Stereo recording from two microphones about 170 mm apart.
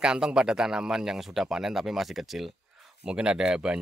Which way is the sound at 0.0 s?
5° right (ahead or behind).